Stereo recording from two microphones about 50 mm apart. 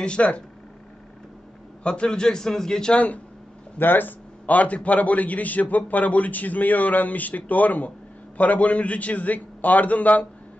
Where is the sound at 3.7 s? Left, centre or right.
Left.